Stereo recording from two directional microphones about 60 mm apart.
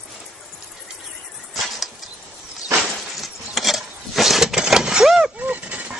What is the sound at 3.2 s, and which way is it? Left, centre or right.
Mechanisms, centre.